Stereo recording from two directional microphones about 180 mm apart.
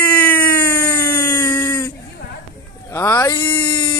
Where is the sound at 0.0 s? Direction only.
10° left (ahead or behind).